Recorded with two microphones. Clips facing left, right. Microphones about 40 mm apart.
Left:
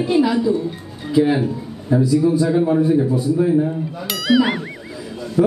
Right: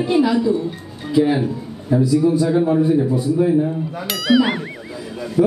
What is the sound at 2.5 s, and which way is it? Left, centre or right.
Speech, centre.